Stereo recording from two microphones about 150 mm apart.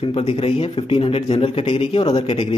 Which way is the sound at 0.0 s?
35° left (ahead or behind).